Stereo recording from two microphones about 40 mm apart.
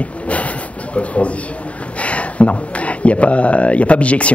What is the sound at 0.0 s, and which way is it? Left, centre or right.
A man's voice, left.